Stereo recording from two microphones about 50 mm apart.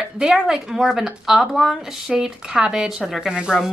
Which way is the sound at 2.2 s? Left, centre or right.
Centre.